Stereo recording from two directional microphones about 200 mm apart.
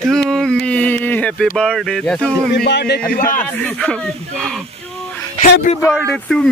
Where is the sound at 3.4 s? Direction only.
5° left (ahead or behind).